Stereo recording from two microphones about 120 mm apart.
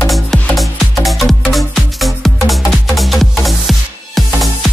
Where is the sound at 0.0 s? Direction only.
Centre (ahead or behind).